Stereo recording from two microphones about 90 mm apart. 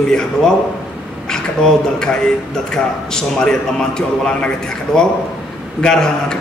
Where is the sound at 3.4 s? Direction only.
5° left (ahead or behind).